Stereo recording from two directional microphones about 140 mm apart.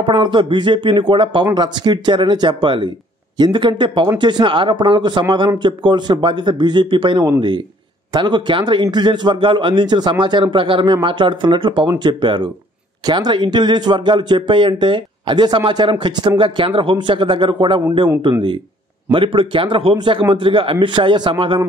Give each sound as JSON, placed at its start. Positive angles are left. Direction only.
{"t": 0.0, "sound": "speech", "side_deg": -35}